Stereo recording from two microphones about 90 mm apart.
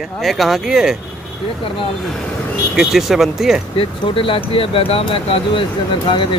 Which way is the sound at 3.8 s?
80° left.